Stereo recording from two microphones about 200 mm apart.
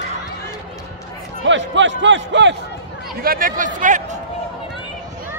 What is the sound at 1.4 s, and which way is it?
A man's voice, 65° right (ahead or behind).